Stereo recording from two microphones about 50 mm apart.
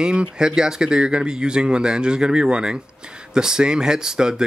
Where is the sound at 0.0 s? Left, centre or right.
Centre.